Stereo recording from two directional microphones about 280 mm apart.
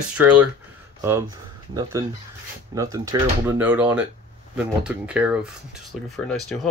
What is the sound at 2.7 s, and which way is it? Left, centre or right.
Speech, centre.